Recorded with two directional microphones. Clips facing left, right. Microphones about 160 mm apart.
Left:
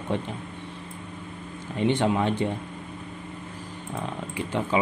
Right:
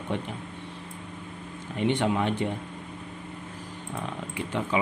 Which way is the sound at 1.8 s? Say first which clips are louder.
Left 2 dB; 35° left (ahead or behind).